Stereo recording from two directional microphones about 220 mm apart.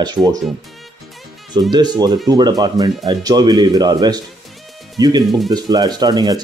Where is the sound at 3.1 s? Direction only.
15° right (ahead or behind).